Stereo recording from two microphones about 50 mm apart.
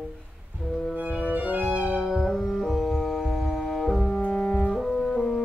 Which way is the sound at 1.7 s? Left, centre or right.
Right.